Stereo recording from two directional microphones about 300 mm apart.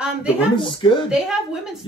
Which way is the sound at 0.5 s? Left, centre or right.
Centre.